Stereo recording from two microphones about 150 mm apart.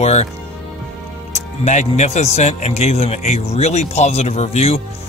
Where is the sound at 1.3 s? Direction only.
50° left (ahead or behind).